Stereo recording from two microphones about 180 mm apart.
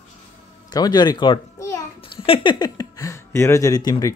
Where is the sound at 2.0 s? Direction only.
30° left (ahead or behind).